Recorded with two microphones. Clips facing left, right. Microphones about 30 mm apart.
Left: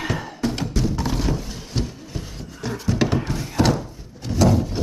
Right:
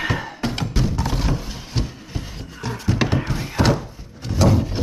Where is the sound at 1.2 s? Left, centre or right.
Centre.